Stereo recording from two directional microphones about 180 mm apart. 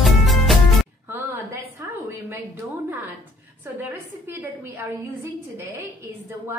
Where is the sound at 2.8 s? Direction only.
10° right (ahead or behind).